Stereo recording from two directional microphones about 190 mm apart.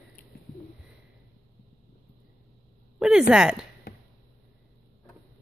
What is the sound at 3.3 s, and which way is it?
Speech, 5° right (ahead or behind).